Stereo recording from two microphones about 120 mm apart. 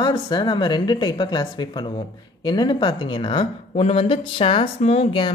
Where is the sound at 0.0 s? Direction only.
40° left (ahead or behind).